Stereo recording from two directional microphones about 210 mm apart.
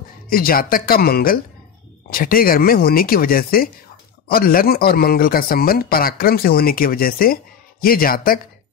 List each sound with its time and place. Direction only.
0.3 s speech: 45° left (ahead or behind)